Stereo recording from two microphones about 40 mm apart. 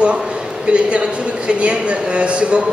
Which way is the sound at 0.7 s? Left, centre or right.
Right.